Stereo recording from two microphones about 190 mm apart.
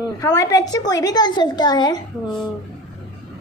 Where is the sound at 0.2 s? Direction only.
20° left (ahead or behind).